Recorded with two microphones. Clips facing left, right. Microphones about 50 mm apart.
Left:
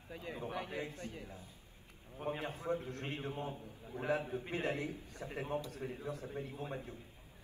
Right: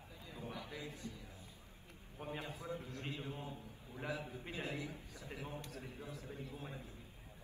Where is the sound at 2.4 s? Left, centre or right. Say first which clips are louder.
Left 7 dB; left.